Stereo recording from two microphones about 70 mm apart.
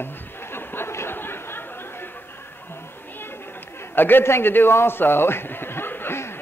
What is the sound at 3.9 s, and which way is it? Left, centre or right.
A man's voice, left.